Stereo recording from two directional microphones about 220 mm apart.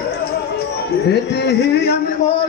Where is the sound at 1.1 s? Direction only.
50° left (ahead or behind).